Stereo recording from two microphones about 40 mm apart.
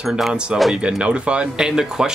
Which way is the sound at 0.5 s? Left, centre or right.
Right.